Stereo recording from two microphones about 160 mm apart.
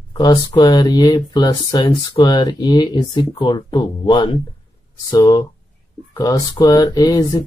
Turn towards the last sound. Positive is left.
turn(degrees=25)  # may be behind; listen again after turning